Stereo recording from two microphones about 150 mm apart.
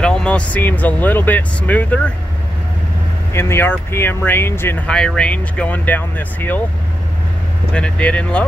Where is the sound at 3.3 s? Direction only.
15° left (ahead or behind).